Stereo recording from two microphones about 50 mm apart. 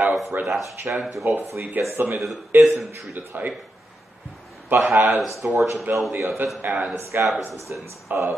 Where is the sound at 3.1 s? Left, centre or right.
Right.